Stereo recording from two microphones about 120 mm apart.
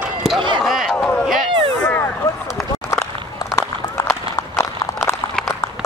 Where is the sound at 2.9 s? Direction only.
25° left (ahead or behind).